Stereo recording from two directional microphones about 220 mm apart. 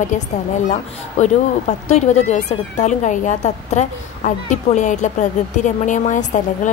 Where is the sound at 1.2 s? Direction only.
30° left (ahead or behind).